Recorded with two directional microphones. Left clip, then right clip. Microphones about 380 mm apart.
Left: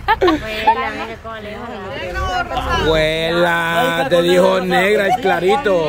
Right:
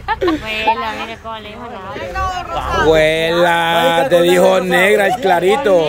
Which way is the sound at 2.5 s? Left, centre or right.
Centre.